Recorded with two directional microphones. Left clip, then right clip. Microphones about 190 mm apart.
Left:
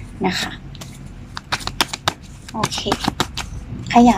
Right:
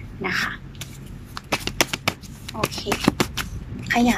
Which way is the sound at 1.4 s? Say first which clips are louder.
Left 3 dB; 15° right (ahead or behind).